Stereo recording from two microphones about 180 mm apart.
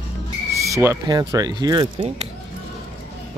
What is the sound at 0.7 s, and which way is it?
Speech, 15° right (ahead or behind).